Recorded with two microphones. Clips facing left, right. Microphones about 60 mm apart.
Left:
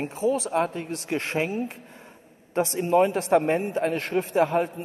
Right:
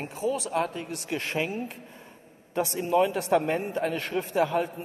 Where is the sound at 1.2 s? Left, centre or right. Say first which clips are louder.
Left 3 dB; left.